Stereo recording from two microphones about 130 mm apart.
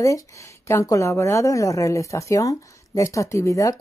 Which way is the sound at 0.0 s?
25° left (ahead or behind).